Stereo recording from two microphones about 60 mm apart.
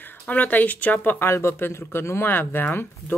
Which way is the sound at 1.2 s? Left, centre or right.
Left.